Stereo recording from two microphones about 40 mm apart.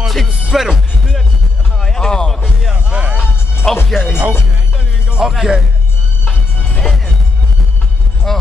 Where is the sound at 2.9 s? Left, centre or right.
Right.